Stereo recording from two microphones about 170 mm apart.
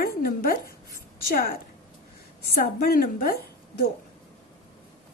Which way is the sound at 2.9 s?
60° left (ahead or behind).